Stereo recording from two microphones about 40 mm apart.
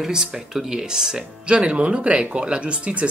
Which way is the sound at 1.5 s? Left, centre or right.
Right.